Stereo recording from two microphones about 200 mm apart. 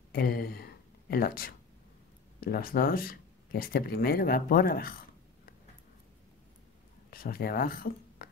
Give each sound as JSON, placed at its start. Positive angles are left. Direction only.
{"t": 0.1, "sound": "speech", "side_deg": 50}
{"t": 7.1, "sound": "speech", "side_deg": 45}